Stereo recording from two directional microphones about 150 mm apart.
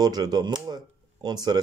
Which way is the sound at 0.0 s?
25° right (ahead or behind).